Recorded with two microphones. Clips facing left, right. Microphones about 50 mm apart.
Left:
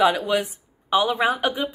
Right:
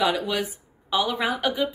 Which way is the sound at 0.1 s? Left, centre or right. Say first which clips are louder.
Left 3 dB; left.